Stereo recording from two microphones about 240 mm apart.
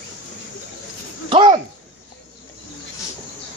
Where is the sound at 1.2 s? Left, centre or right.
Right.